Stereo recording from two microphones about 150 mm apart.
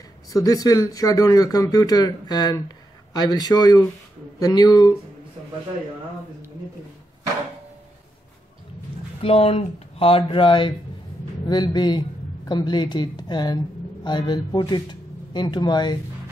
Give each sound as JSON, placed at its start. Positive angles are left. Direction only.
{"t": 0.3, "sound": "speech", "side_deg": 25}
{"t": 9.2, "sound": "speech", "side_deg": 40}